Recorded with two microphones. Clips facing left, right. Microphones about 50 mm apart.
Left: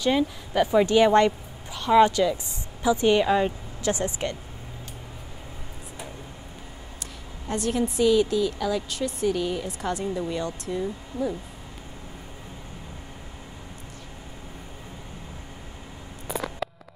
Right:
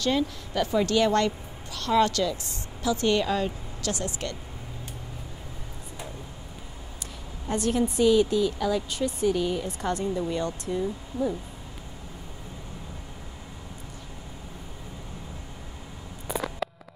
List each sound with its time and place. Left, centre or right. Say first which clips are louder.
0.0 s a woman's voice: left 3 dB; centre
7.4 s a woman's voice: even; centre
16.3 s a sound: even; centre